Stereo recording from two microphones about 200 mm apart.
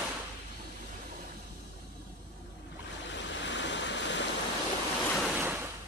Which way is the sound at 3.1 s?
65° left (ahead or behind).